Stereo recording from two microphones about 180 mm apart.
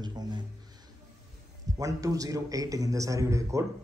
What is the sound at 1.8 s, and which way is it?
A man's voice, 20° right (ahead or behind).